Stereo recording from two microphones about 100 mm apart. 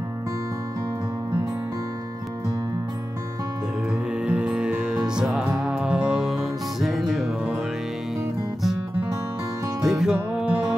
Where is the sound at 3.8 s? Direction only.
10° right (ahead or behind).